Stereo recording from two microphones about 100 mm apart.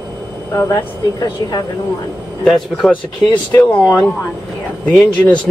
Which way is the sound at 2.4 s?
5° left (ahead or behind).